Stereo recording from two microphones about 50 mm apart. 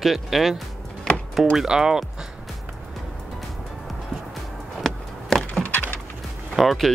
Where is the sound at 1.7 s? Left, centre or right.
Centre.